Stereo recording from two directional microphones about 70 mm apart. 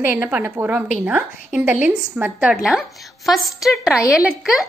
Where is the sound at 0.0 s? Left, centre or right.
Right.